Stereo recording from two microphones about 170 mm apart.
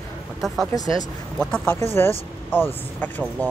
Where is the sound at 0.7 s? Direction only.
20° left (ahead or behind).